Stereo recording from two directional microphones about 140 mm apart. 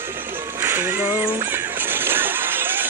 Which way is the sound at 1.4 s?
15° right (ahead or behind).